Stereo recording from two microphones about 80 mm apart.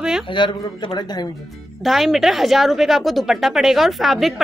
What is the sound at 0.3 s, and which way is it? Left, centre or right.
Speech, left.